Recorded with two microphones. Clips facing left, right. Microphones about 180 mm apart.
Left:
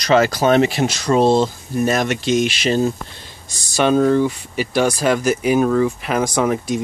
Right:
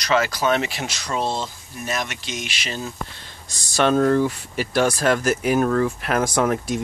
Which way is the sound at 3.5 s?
Centre (ahead or behind).